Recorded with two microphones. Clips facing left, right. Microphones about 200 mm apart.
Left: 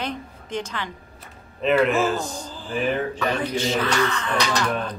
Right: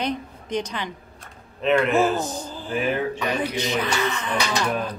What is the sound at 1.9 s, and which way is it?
Speech, 20° right (ahead or behind).